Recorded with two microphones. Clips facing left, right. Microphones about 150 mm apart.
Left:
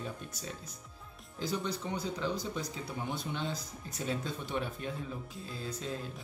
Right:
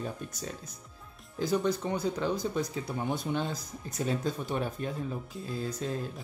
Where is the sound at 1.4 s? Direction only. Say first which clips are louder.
Right 7 dB; 50° right (ahead or behind).